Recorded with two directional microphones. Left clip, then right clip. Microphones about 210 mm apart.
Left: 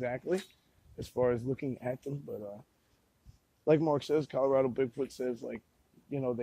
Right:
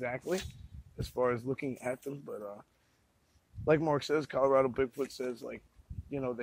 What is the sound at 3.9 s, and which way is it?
Speech, 30° left (ahead or behind).